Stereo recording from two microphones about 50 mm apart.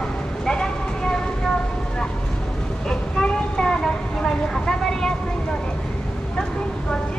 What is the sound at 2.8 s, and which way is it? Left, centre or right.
Vehicle, centre.